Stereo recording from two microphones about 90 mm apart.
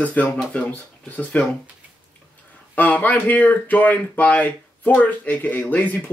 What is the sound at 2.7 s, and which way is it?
Speech, 20° left (ahead or behind).